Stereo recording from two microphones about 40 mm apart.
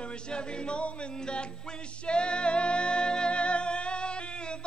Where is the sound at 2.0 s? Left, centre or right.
Left.